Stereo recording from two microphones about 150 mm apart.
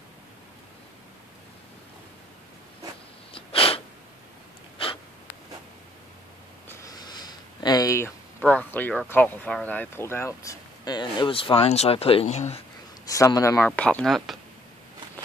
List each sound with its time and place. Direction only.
3.3 s sneeze: 40° left (ahead or behind)
6.7 s a sound: 25° left (ahead or behind)
8.5 s speech: 10° left (ahead or behind); by 12.6 s 45° left (ahead or behind)
13.0 s speech: 25° left (ahead or behind)
13.7 s speech: 10° left (ahead or behind)